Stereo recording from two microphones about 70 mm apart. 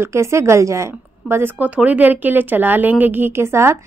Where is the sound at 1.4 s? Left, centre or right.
Right.